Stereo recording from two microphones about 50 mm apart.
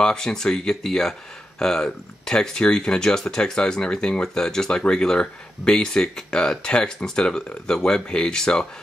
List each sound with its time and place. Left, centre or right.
0.0 s speech: centre